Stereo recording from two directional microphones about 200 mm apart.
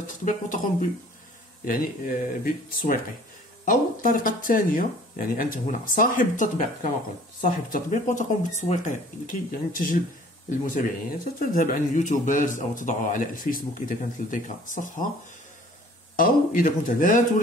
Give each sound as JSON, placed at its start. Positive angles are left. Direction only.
{"t": 0.0, "sound": "a man's voice", "side_deg": 40}
{"t": 11.3, "sound": "a man's voice", "side_deg": 45}
{"t": 16.2, "sound": "speech", "side_deg": 45}